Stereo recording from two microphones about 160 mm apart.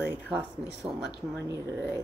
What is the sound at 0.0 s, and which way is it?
Speech, 10° right (ahead or behind).